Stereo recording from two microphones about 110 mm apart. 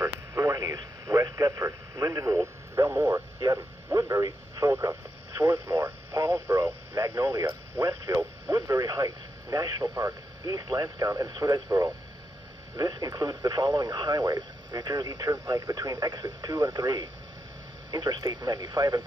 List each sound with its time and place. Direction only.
0.0 s radio: 30° right (ahead or behind)
3.1 s speech: 40° right (ahead or behind)
5.4 s radio: 20° right (ahead or behind)
7.0 s speech: 30° right (ahead or behind)
7.8 s radio: 30° right (ahead or behind)
12.7 s speech: 40° right (ahead or behind)